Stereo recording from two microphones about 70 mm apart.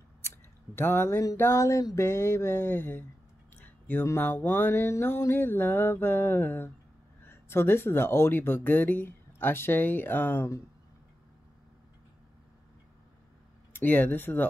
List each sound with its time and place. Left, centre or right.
0.7 s speech: left
1.3 s a sound: left
2.0 s speech: left
3.5 s a sound: left
4.2 s speech: left
13.7 s speech: left